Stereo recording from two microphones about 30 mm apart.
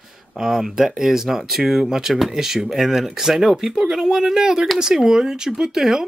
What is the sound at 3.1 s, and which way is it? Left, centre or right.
Speech, centre.